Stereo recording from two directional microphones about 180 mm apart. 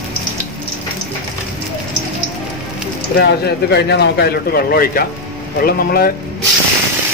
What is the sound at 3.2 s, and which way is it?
A man's voice, 65° left (ahead or behind).